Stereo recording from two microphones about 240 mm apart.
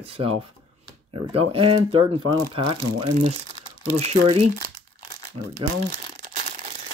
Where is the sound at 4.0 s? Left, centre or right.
Right.